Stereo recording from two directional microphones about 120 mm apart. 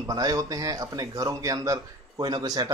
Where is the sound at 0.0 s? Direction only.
30° right (ahead or behind).